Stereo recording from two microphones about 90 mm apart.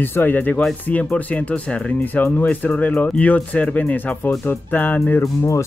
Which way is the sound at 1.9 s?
25° left (ahead or behind).